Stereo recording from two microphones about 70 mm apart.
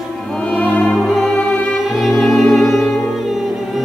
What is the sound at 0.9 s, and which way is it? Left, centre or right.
Music, centre.